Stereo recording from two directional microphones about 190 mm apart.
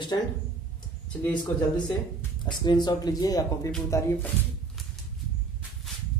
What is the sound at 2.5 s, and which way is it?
Speech, 20° left (ahead or behind).